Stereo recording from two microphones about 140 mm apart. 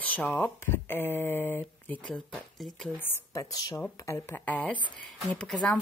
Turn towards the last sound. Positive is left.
turn(degrees=5)  # may be behind; listen again after turning